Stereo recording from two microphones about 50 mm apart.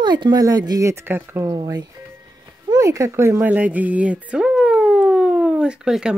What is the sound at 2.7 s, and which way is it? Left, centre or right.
Speech, right.